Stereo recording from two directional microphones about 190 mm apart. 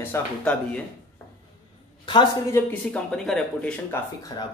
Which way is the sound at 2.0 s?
20° left (ahead or behind).